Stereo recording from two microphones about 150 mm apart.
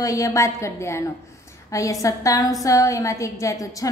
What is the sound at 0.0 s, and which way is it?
A woman's voice, 20° left (ahead or behind).